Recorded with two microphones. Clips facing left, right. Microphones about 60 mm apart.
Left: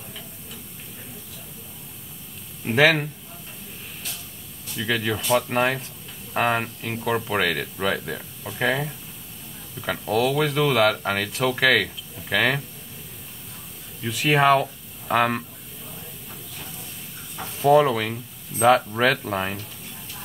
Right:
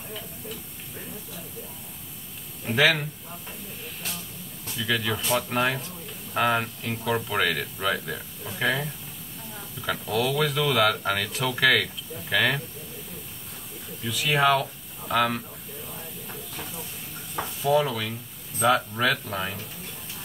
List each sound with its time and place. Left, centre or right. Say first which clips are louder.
2.6 s speech: left 4 dB; left
4.7 s speech: left 2 dB; left
8.0 s speech: left 2 dB; centre
14.0 s speech: left 4 dB; left
17.6 s speech: left 6 dB; left